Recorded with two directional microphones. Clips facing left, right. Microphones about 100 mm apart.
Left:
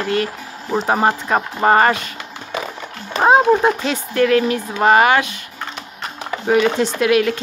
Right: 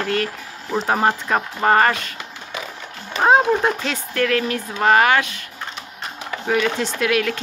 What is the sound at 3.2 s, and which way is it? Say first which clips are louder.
Speech: left 3 dB; 10° left (ahead or behind).